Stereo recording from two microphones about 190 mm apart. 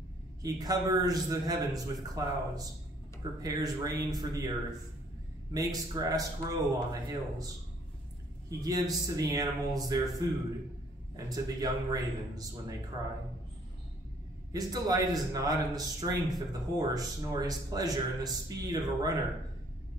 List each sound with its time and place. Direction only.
0.4 s speech: 20° right (ahead or behind)
5.5 s speech: 20° right (ahead or behind)
8.5 s speech: 20° right (ahead or behind)
14.5 s speech: 20° right (ahead or behind)